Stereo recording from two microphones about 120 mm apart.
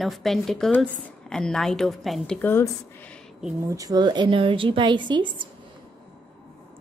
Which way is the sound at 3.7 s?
30° right (ahead or behind).